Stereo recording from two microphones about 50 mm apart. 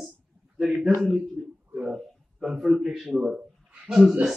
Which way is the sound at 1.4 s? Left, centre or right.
Centre.